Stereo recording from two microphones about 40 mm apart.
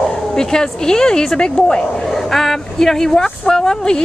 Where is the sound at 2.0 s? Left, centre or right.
Centre.